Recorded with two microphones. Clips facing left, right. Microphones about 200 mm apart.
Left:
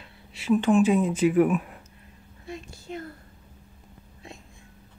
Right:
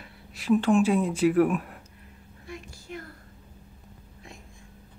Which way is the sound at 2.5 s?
25° left (ahead or behind).